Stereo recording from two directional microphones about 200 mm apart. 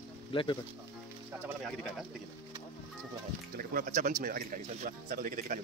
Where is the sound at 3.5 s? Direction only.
45° right (ahead or behind).